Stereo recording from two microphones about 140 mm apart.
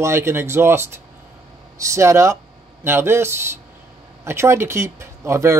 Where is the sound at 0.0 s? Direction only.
20° right (ahead or behind).